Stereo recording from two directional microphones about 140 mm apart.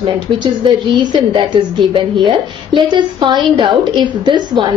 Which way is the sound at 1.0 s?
35° right (ahead or behind).